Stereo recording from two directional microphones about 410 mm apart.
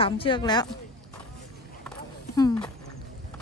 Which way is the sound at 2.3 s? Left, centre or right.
Centre.